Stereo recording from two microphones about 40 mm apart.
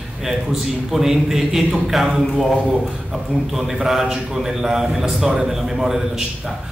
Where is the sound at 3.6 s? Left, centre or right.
Centre.